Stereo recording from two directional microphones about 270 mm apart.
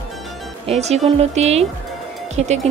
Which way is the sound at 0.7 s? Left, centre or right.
Right.